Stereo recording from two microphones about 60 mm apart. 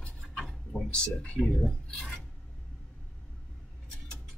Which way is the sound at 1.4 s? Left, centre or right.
Centre.